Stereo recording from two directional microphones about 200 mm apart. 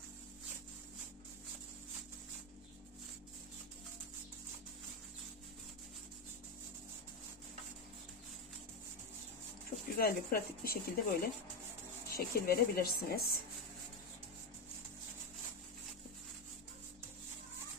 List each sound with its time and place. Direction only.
9.9 s speech: 50° left (ahead or behind)